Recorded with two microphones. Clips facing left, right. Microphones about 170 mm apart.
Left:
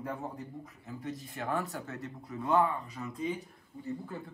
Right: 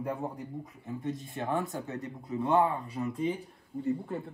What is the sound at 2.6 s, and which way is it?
Speech, 35° right (ahead or behind).